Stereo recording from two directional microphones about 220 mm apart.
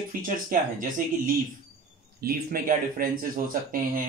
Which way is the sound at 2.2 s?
40° right (ahead or behind).